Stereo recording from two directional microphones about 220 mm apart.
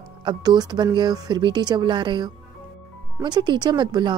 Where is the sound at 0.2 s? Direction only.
20° right (ahead or behind).